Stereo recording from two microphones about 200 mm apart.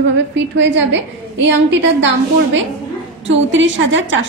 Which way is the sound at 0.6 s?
65° right (ahead or behind).